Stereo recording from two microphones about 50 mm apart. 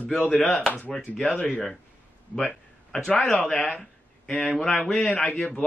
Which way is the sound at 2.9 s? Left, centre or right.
Centre.